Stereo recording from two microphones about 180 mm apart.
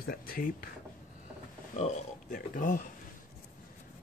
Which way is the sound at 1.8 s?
45° left (ahead or behind).